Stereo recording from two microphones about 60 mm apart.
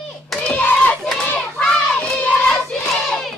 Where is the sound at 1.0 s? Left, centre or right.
Centre.